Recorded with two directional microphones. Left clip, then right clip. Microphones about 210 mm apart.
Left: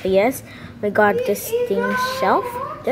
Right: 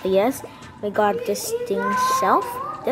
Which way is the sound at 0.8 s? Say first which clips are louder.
Left 4 dB; centre (ahead or behind).